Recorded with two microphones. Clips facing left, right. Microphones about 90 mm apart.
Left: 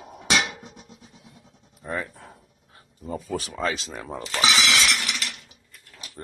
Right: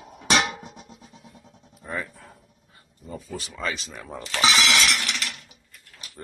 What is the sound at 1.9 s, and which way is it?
Speech, 45° left (ahead or behind).